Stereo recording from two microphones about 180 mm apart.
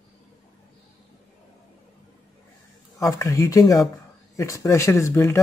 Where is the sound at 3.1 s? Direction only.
20° left (ahead or behind).